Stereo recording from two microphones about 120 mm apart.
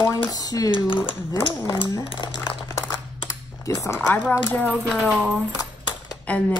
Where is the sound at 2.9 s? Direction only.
25° left (ahead or behind).